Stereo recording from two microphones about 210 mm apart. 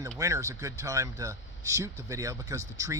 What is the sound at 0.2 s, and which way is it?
Speech, 15° right (ahead or behind).